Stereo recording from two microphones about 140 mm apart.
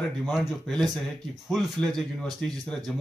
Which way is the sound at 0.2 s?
Centre (ahead or behind).